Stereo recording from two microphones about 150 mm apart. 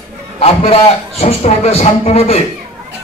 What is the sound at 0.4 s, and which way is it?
A man's voice, 40° left (ahead or behind).